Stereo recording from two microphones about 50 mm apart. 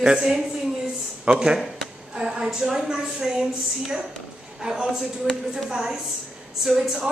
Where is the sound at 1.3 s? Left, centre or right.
Right.